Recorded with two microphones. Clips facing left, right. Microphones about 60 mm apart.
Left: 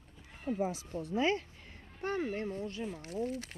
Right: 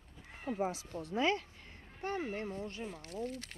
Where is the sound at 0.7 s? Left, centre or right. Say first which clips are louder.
Left 2 dB; right.